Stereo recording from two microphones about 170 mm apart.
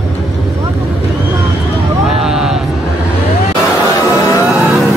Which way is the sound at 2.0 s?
Centre (ahead or behind).